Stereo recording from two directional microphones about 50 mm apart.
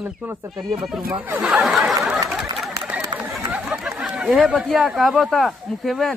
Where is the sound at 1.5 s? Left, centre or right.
Centre.